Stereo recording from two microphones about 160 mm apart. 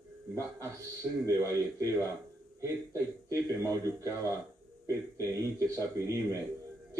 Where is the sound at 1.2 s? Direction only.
20° right (ahead or behind).